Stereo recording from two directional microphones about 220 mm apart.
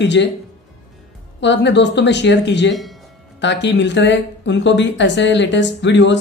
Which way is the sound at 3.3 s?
55° left (ahead or behind).